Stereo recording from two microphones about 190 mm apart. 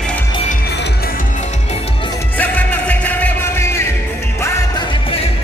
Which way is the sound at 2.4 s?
10° left (ahead or behind).